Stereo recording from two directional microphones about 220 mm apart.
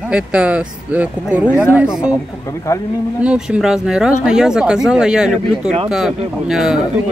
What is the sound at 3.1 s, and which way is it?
Speech, 5° right (ahead or behind).